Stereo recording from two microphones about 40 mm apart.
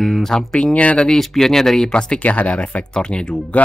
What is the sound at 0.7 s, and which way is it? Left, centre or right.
Speech, left.